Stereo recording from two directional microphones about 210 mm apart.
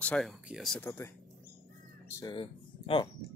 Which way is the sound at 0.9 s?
10° left (ahead or behind).